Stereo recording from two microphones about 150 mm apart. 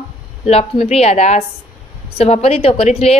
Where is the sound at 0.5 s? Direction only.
40° left (ahead or behind).